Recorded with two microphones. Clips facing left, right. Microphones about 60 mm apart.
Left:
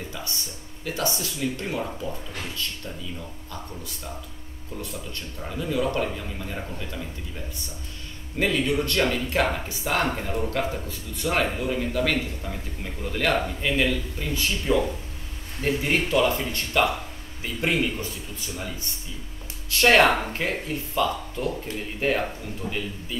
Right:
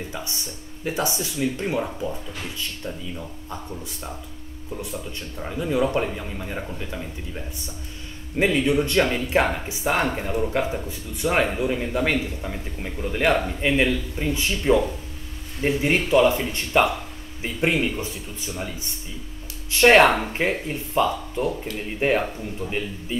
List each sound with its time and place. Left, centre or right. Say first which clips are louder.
0.8 s speech: right 2 dB; right
5.4 s a man's voice: right 3 dB; centre
8.4 s a man's voice: right 4 dB; centre
19.7 s speech: right 3 dB; right